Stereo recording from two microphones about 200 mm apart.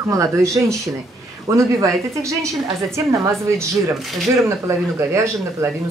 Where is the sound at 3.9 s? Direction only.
Centre (ahead or behind).